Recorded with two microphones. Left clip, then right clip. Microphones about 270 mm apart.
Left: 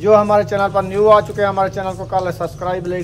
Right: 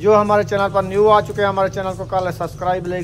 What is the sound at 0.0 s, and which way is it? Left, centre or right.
Speech, centre.